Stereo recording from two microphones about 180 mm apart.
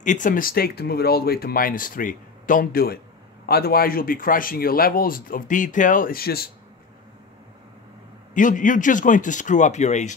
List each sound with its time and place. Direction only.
0.0 s speech: 45° left (ahead or behind)
8.4 s speech: 45° left (ahead or behind)